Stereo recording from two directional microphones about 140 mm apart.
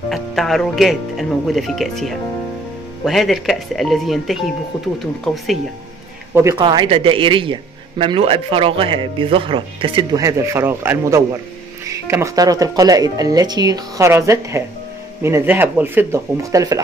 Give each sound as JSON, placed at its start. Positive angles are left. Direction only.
{"t": 0.1, "sound": "speech", "side_deg": 0}
{"t": 6.6, "sound": "speech", "side_deg": -35}
{"t": 10.2, "sound": "speech", "side_deg": -20}